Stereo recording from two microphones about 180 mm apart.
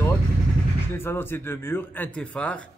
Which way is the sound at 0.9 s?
10° left (ahead or behind).